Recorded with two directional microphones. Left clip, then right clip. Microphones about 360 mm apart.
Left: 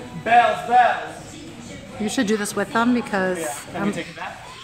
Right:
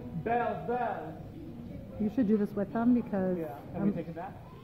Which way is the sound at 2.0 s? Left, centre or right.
Centre.